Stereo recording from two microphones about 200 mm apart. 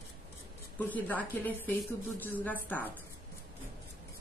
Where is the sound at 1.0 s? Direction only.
10° left (ahead or behind).